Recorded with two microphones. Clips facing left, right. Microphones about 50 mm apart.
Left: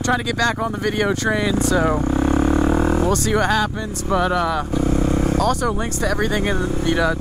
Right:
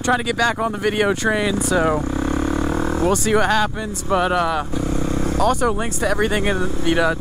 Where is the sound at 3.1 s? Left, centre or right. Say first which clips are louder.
Right 1 dB; centre.